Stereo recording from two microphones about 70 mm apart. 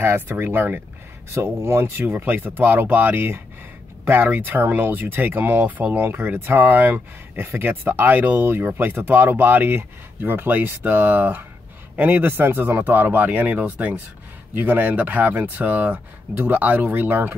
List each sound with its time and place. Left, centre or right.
0.0 s speech: right